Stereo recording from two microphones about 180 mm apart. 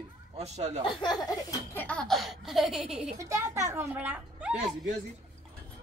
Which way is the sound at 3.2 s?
15° right (ahead or behind).